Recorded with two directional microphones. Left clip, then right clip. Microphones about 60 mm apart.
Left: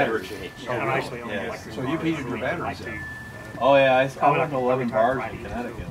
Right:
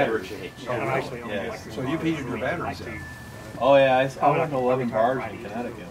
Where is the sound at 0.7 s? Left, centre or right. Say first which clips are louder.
Left 1 dB; left.